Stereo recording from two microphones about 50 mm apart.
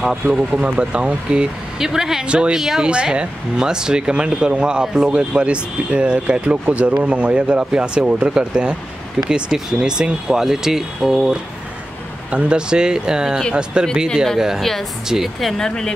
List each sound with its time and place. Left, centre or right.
0.0 s speech: centre
2.2 s speech: right
2.6 s speech: centre
2.9 s speech: right
12.3 s speech: right
14.6 s speech: centre
15.0 s speech: centre
15.4 s speech: centre